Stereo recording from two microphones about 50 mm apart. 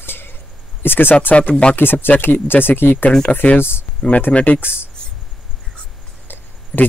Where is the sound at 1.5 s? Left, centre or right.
Centre.